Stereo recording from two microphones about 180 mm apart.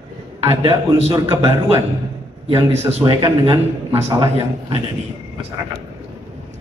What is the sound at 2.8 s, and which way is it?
Speech, 25° right (ahead or behind).